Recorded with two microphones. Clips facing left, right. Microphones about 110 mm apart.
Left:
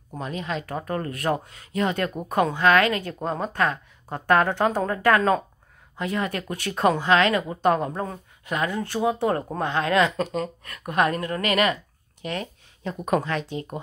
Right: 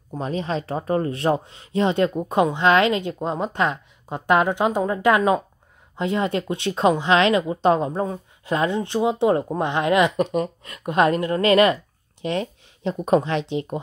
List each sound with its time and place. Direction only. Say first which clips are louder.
0.2 s speech: right 4 dB; 35° right (ahead or behind); by 5.4 s 15° right (ahead or behind)
5.9 s speech: right 5 dB; 25° right (ahead or behind)